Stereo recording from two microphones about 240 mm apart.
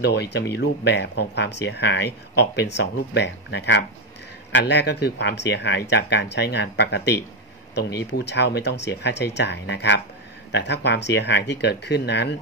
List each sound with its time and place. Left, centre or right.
0.0 s speech: left